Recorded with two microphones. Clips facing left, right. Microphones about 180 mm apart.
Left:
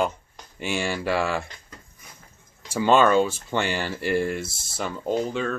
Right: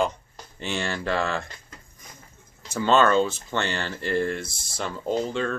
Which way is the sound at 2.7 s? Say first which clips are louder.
Left 1 dB; 10° left (ahead or behind).